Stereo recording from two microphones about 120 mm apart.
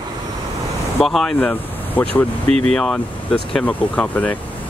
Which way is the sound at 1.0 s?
Centre (ahead or behind).